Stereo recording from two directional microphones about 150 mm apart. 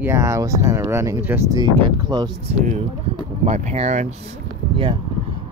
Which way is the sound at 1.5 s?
30° right (ahead or behind).